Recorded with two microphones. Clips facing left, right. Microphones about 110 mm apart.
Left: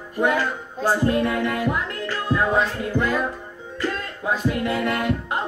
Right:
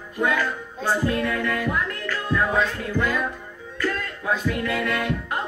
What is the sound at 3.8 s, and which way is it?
Music, 25° left (ahead or behind).